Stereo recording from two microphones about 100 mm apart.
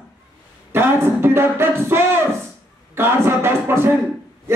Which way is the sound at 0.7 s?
25° right (ahead or behind).